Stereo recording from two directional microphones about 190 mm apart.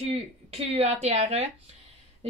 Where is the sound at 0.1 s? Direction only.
35° right (ahead or behind).